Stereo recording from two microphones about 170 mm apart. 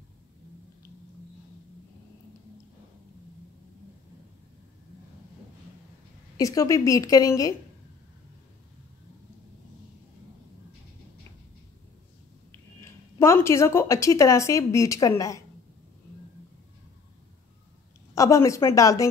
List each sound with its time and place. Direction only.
6.3 s a woman's voice: 20° left (ahead or behind)
13.2 s speech: 15° left (ahead or behind)
18.1 s speech: 20° left (ahead or behind)